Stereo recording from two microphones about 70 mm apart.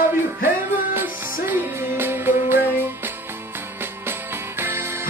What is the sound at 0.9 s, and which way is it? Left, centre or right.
Music, right.